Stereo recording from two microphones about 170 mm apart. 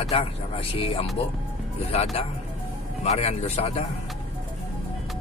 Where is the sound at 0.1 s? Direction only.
35° left (ahead or behind).